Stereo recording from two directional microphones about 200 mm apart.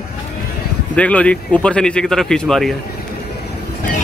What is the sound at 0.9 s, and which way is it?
Speech, 5° left (ahead or behind).